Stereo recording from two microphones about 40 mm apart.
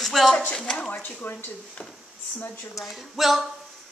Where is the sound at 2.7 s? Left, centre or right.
Centre.